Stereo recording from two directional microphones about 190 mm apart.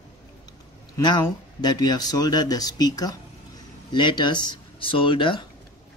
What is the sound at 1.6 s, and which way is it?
Speech, 20° left (ahead or behind).